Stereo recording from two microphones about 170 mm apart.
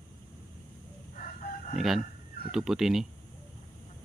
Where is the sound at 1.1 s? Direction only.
50° left (ahead or behind).